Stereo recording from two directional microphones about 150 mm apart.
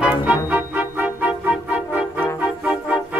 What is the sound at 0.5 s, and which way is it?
Music, 10° right (ahead or behind).